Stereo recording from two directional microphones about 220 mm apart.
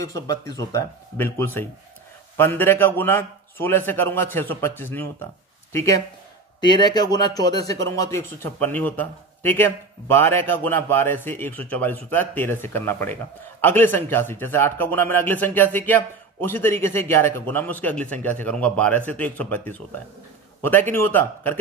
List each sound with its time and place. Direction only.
0.0 s a man's voice: 15° left (ahead or behind)